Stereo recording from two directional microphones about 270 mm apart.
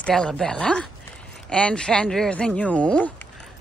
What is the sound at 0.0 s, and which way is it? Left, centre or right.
Speech, centre.